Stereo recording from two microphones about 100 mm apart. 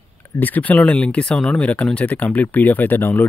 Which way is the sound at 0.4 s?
15° left (ahead or behind).